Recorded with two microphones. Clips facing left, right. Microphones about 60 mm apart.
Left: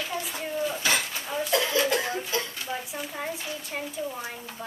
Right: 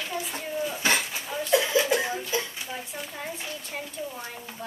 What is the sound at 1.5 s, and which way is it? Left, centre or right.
Cough, centre.